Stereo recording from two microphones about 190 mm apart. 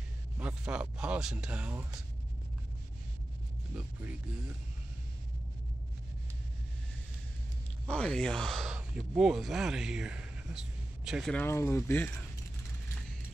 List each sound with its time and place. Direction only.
0.4 s speech: 5° right (ahead or behind)
7.8 s speech: 5° left (ahead or behind)
11.3 s speech: 10° left (ahead or behind)